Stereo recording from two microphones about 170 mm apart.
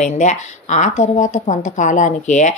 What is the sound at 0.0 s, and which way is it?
Speech, 45° left (ahead or behind).